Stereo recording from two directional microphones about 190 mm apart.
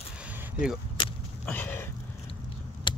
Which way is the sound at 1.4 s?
10° left (ahead or behind).